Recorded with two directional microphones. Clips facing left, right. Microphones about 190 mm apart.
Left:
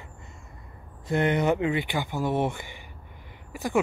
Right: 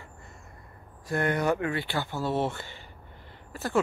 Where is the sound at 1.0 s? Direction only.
20° left (ahead or behind).